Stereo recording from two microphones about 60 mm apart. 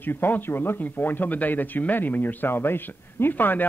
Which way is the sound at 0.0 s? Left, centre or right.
Left.